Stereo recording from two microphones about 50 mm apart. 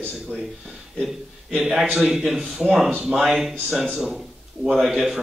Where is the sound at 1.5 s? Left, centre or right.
Centre.